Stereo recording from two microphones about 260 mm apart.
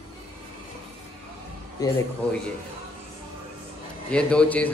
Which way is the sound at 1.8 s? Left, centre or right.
Centre.